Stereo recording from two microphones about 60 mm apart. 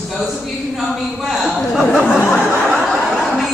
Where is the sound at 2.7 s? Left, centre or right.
Centre.